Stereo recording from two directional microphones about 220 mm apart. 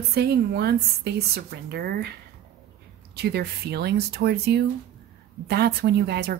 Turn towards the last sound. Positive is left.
turn(degrees=-45)  # may be behind; listen again after turning